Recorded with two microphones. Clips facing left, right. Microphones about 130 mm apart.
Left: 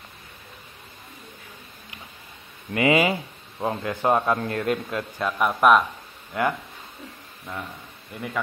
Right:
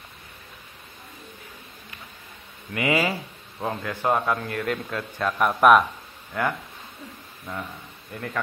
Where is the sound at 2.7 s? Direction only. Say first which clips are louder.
Left 4 dB; 25° left (ahead or behind).